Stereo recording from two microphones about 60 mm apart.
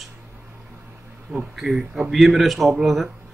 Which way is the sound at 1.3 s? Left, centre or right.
Centre.